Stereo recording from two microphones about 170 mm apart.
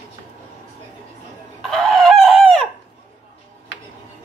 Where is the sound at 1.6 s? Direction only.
Centre (ahead or behind).